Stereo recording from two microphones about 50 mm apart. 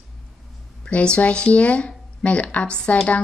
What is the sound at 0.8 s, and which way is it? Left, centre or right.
Speech, left.